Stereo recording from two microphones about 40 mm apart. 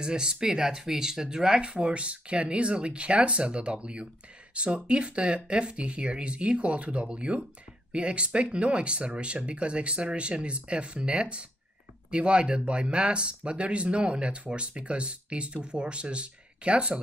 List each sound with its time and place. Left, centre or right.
0.0 s speech: centre